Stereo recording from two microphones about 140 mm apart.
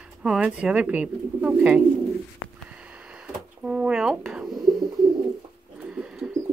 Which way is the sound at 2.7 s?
5° right (ahead or behind).